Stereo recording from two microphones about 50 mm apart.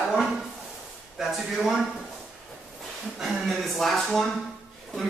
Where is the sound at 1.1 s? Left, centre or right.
Centre.